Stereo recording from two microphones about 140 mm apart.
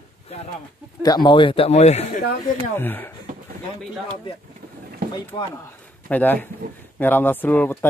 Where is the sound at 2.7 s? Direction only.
15° left (ahead or behind).